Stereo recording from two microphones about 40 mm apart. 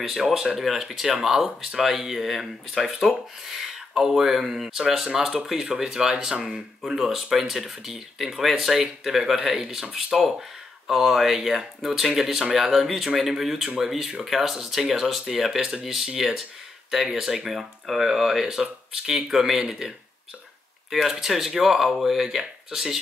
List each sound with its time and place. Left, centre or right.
0.0 s speech: centre
6.9 s speech: centre
10.9 s speech: centre